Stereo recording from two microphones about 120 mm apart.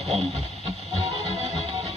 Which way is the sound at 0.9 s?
60° right (ahead or behind).